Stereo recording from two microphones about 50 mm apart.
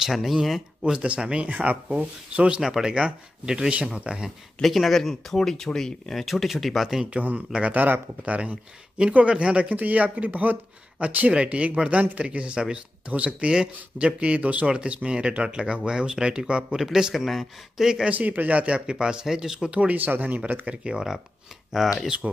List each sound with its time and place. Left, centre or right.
0.0 s speech: centre
0.9 s a man's voice: right
2.6 s speech: centre
4.6 s speech: centre
6.2 s speech: centre
7.2 s speech: right
18.1 s a man's voice: right
18.9 s speech: centre
19.7 s speech: right
20.0 s a man's voice: right
20.6 s speech: centre